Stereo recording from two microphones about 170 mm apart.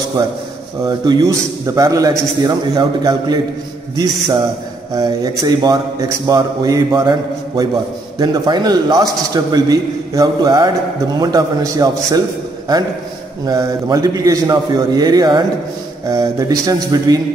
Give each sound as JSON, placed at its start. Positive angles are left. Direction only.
{"t": 0.8, "sound": "a man's voice", "side_deg": -25}
{"t": 13.5, "sound": "a man's voice", "side_deg": -20}